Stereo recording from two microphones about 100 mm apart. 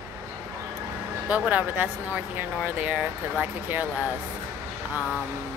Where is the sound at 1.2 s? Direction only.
15° right (ahead or behind).